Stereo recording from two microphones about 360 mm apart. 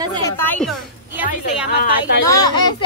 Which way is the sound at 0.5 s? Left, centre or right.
Centre.